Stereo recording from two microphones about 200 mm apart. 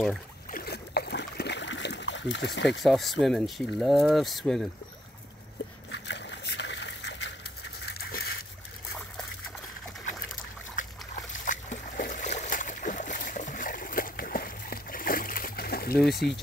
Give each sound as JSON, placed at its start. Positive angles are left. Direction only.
{"t": 0.5, "sound": "boat", "side_deg": 50}
{"t": 2.8, "sound": "speech", "side_deg": 0}
{"t": 5.9, "sound": "a sound", "side_deg": 60}
{"t": 7.9, "sound": "a sound", "side_deg": 50}
{"t": 11.3, "sound": "boat", "side_deg": 40}
{"t": 16.0, "sound": "speech", "side_deg": 0}